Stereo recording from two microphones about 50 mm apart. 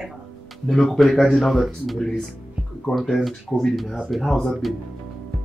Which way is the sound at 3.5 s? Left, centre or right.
Centre.